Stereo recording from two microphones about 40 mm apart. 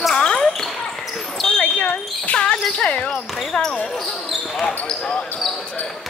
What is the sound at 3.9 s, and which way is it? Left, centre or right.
Basketball bounce, centre.